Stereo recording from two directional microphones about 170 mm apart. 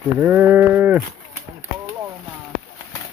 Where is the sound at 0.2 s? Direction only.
10° right (ahead or behind).